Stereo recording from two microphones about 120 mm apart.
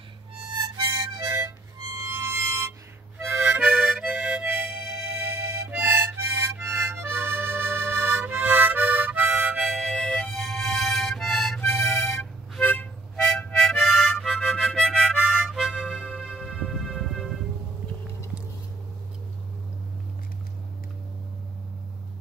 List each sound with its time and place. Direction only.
0.5 s harmonica: 35° right (ahead or behind)
3.3 s harmonica: 15° right (ahead or behind)
9.4 s music: 5° right (ahead or behind)
11.8 s music: 20° left (ahead or behind)
12.2 s harmonica: 10° left (ahead or behind)
15.1 s harmonica: 5° right (ahead or behind)